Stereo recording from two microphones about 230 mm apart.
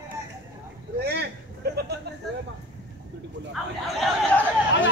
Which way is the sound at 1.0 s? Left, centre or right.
Right.